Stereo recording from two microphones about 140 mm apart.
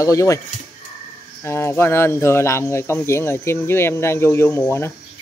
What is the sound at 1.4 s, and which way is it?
Speech, 20° left (ahead or behind).